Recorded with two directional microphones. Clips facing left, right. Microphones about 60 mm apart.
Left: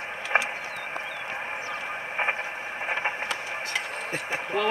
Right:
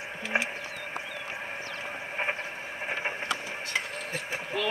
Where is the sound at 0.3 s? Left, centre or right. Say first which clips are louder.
Left 4 dB; left.